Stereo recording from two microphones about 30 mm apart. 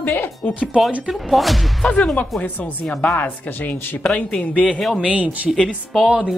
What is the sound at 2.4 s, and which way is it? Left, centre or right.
Speech, left.